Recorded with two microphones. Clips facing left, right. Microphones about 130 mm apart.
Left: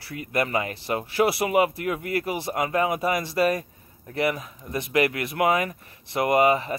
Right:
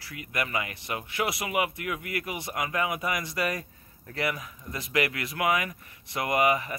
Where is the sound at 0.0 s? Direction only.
30° left (ahead or behind).